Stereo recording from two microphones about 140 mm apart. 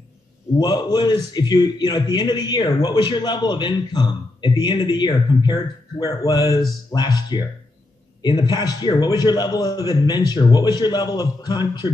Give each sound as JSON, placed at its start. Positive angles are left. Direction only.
{"t": 0.6, "sound": "a man's voice", "side_deg": 30}